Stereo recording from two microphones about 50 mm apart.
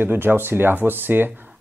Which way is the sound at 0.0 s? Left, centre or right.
Right.